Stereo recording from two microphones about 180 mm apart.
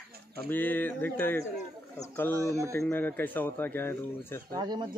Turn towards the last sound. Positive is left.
turn(degrees=-25)  # may be behind; listen again after turning